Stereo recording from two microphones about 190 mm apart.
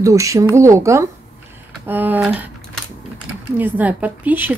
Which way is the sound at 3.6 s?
10° right (ahead or behind).